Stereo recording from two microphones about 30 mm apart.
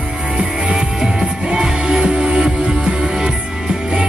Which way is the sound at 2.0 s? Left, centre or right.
Right.